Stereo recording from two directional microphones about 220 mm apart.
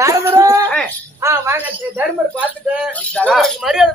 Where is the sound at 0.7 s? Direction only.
5° left (ahead or behind).